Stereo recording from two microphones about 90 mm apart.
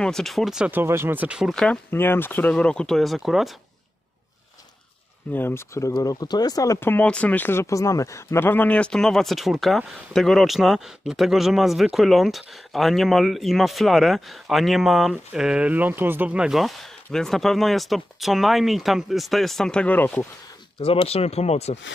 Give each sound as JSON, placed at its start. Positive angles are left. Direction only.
{"t": 0.0, "sound": "speech", "side_deg": 5}
{"t": 0.7, "sound": "speech", "side_deg": -25}
{"t": 1.5, "sound": "speech", "side_deg": 10}
{"t": 1.9, "sound": "speech", "side_deg": 25}
{"t": 2.5, "sound": "speech", "side_deg": 10}
{"t": 5.3, "sound": "speech", "side_deg": 25}
{"t": 6.0, "sound": "speech", "side_deg": 45}
{"t": 6.8, "sound": "speech", "side_deg": 25}
{"t": 16.4, "sound": "speech", "side_deg": 0}
{"t": 20.8, "sound": "speech", "side_deg": 90}